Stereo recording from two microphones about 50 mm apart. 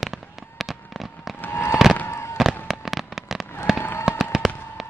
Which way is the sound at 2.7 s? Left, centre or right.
Centre.